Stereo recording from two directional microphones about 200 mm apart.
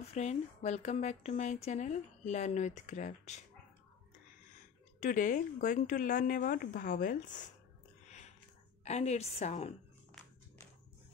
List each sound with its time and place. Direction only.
0.1 s speech: 35° left (ahead or behind)
4.6 s speech: 40° left (ahead or behind)
8.1 s a sound: 35° left (ahead or behind)
8.8 s speech: 35° left (ahead or behind)